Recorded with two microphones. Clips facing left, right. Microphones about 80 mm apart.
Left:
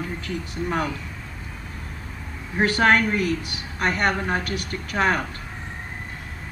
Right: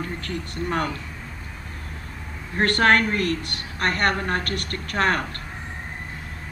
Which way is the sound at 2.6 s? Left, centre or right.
Centre.